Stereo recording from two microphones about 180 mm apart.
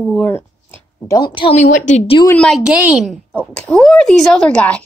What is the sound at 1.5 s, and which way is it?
Speech, 45° left (ahead or behind).